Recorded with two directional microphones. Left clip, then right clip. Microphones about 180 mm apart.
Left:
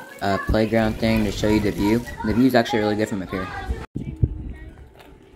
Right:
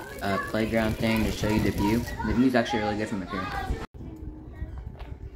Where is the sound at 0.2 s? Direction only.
25° left (ahead or behind).